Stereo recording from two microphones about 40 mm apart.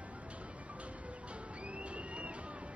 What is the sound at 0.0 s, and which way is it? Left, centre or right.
Music, right.